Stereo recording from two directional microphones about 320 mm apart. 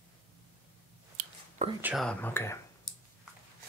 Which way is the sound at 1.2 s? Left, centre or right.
Right.